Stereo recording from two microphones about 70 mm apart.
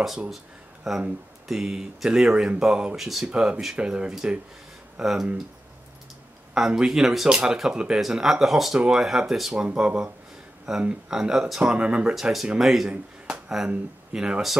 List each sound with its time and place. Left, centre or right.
0.8 s speech: centre
3.0 s speech: centre
3.3 s speech: centre
6.5 s speech: centre
12.2 s speech: centre